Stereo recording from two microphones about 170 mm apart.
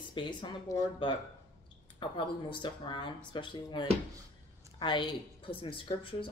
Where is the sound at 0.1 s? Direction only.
25° left (ahead or behind).